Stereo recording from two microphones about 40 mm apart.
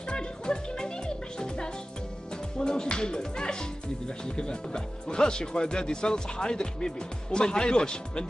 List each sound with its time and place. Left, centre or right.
0.1 s music: centre
2.6 s speech: centre